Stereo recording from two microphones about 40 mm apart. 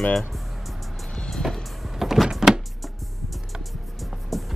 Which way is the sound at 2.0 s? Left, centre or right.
Centre.